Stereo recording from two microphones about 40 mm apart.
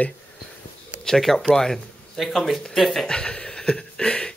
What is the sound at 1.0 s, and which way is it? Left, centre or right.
Speech, centre.